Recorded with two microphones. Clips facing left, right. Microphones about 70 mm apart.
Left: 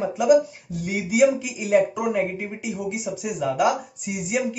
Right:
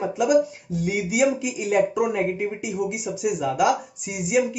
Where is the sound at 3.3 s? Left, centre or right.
Centre.